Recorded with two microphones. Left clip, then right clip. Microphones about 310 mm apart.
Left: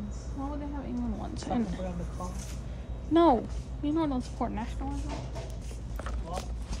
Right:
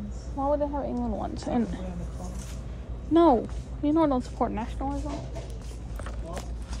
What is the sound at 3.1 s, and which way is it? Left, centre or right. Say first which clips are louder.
Speech: right 3 dB; centre.